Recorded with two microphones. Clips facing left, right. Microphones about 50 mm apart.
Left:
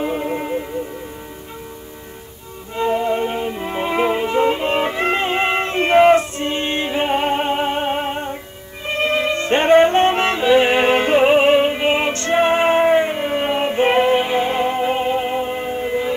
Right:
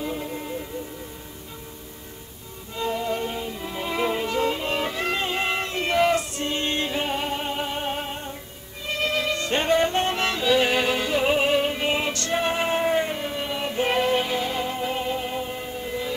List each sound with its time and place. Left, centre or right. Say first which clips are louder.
0.0 s music: left 8 dB; left
2.7 s music: left 8 dB; left
13.3 s music: left 9 dB; left